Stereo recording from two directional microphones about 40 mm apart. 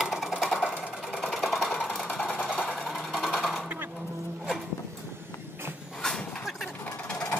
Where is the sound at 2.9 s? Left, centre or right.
Centre.